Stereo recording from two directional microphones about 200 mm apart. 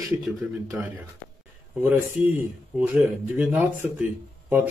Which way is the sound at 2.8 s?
5° right (ahead or behind).